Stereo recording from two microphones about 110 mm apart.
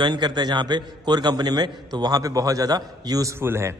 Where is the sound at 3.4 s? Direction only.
20° right (ahead or behind).